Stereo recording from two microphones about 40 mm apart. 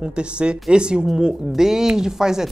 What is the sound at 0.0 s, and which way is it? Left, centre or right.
Speech, right.